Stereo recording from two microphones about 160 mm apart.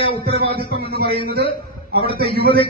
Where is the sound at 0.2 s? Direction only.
80° right.